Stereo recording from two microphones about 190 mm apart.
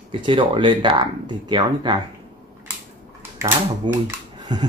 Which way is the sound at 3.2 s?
10° right (ahead or behind).